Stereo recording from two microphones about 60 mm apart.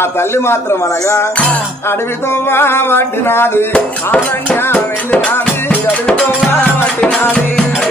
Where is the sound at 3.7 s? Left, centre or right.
Centre.